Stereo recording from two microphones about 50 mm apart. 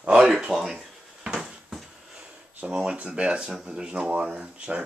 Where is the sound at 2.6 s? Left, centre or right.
Right.